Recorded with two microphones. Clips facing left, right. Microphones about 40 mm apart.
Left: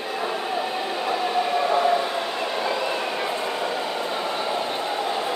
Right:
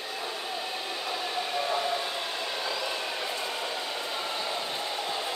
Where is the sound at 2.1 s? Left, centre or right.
Left.